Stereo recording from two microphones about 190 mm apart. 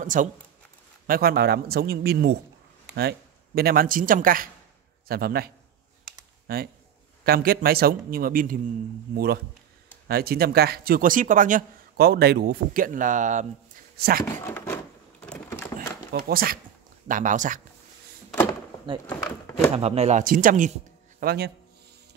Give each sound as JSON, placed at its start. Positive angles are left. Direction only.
{"t": 0.0, "sound": "speech", "side_deg": -45}
{"t": 13.9, "sound": "speech", "side_deg": -55}
{"t": 14.4, "sound": "a sound", "side_deg": 10}
{"t": 16.1, "sound": "speech", "side_deg": -55}
{"t": 18.3, "sound": "a sound", "side_deg": 10}
{"t": 19.0, "sound": "speech", "side_deg": 10}
{"t": 19.7, "sound": "a man's voice", "side_deg": -30}